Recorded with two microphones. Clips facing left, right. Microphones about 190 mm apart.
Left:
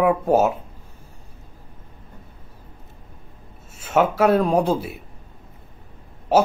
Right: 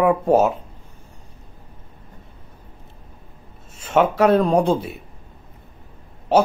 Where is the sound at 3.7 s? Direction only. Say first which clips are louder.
Right 1 dB; 5° left (ahead or behind).